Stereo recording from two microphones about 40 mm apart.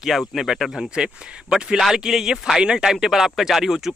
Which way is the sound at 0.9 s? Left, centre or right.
Centre.